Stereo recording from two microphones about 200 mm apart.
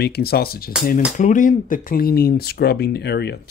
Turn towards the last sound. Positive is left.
turn(degrees=55)  # may be behind; listen again after turning